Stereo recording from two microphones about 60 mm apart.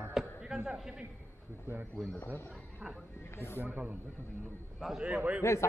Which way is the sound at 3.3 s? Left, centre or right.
Left.